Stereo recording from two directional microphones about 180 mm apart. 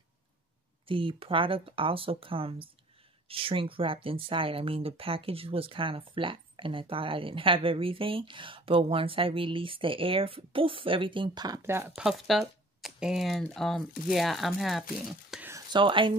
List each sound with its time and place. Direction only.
0.8 s speech: 30° right (ahead or behind); by 11.9 s 15° right (ahead or behind)
11.9 s speech: 5° right (ahead or behind)
15.7 s speech: 30° right (ahead or behind)